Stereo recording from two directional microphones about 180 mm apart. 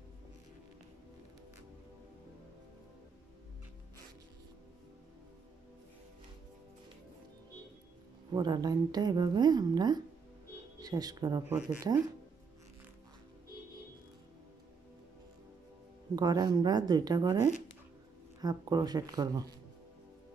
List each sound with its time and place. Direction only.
8.3 s a woman's voice: 20° right (ahead or behind)
11.4 s speech: 10° right (ahead or behind)
16.2 s a woman's voice: 20° right (ahead or behind)